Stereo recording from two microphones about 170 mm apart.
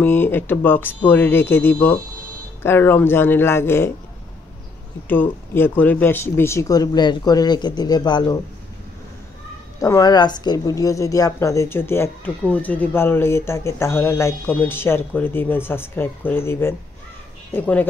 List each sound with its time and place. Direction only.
0.0 s speech: 10° left (ahead or behind)
5.0 s speech: 10° left (ahead or behind)
9.8 s speech: 20° left (ahead or behind)